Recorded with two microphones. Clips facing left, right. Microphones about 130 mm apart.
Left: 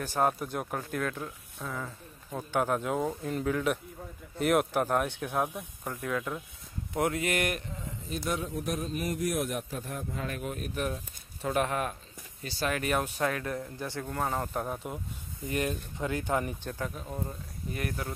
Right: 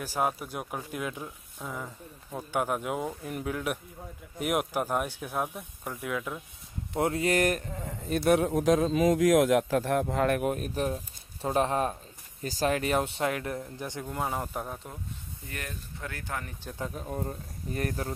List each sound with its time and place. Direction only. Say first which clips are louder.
0.0 s speech: left 2 dB; 10° right (ahead or behind)
6.9 s speech: right 3 dB; 30° right (ahead or behind)
7.8 s speech: right 11 dB; 60° right (ahead or behind)
10.5 s speech: right 3 dB; 35° right (ahead or behind); by 14.8 s centre (ahead or behind)
15.5 s speech: left 9 dB; 20° left (ahead or behind)
17.2 s speech: right 2 dB; 40° right (ahead or behind)